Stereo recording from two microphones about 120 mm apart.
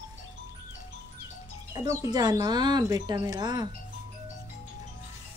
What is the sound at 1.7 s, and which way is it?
A woman's voice, 30° right (ahead or behind).